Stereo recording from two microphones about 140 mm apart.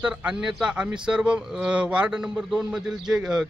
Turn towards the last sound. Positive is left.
turn(degrees=-5)  # may be behind; listen again after turning